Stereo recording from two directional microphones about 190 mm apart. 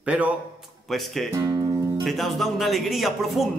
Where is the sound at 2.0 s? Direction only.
Centre (ahead or behind).